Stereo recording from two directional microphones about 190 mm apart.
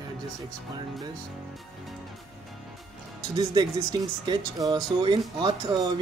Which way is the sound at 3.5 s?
20° right (ahead or behind).